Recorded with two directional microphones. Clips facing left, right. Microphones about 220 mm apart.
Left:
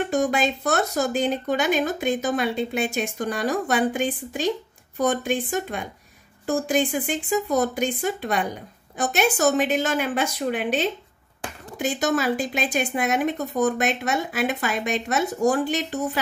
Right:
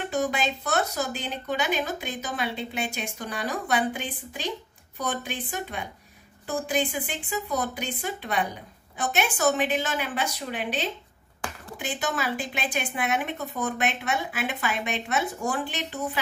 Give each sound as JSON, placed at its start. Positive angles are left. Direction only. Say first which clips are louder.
{"t": 0.1, "sound": "speech", "louder": "left 2 dB", "side_deg": 45}